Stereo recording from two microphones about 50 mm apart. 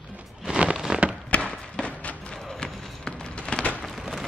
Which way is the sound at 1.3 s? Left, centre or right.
Left.